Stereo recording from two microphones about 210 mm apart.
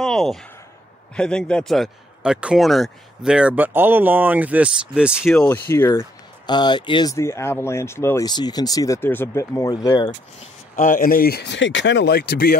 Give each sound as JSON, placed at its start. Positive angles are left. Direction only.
{"t": 0.0, "sound": "a sound", "side_deg": 0}
{"t": 1.1, "sound": "speech", "side_deg": 5}
{"t": 10.8, "sound": "speech", "side_deg": 40}